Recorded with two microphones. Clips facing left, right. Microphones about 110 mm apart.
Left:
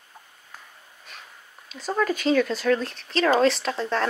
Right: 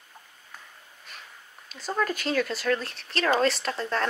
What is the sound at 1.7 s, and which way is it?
Speech, centre (ahead or behind).